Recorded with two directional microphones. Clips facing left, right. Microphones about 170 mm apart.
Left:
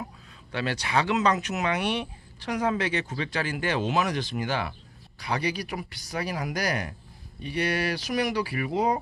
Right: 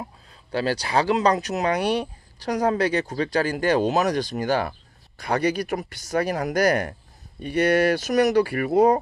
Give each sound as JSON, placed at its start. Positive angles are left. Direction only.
{"t": 0.0, "sound": "speech", "side_deg": -35}